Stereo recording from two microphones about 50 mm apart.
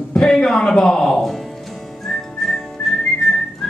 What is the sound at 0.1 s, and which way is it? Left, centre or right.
Speech, centre.